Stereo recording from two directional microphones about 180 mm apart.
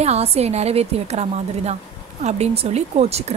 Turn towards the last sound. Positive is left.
turn(degrees=-35)  # may be behind; listen again after turning